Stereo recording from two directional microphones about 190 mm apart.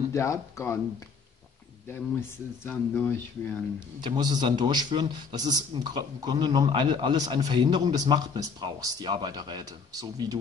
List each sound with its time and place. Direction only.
0.1 s speech: 15° left (ahead or behind)
1.9 s speech: 10° left (ahead or behind)
4.0 s a man's voice: 20° right (ahead or behind)